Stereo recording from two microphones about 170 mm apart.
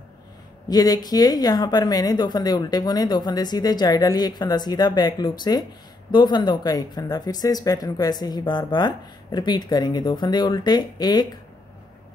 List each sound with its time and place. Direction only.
0.7 s speech: 25° left (ahead or behind)